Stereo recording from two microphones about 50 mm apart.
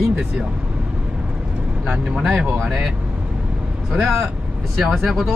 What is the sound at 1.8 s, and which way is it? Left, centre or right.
Speech, centre.